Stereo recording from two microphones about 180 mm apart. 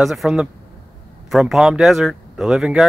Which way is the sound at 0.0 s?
Centre (ahead or behind).